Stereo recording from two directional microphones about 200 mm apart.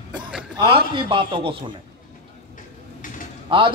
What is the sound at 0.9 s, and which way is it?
Speech, 25° right (ahead or behind).